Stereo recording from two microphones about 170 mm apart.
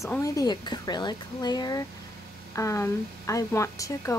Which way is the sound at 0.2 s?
20° left (ahead or behind).